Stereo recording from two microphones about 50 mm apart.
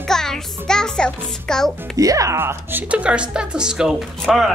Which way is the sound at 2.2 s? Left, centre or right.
Right.